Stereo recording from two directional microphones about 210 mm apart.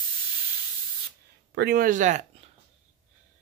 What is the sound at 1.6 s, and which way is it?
Speech, 45° right (ahead or behind).